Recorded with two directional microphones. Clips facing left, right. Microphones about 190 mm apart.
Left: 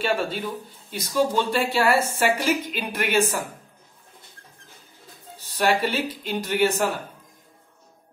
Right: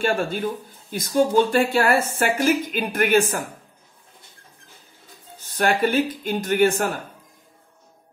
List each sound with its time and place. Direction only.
0.0 s speech: 50° right (ahead or behind)
5.4 s speech: 50° right (ahead or behind)